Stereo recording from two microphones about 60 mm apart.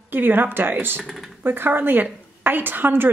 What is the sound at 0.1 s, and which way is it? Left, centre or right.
Speech, right.